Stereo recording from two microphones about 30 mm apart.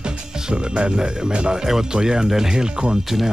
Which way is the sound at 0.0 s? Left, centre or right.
Right.